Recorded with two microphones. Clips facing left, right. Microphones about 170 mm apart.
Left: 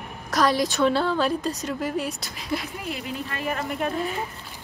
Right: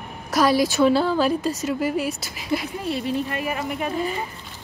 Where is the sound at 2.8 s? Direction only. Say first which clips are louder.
Right 6 dB; 30° right (ahead or behind).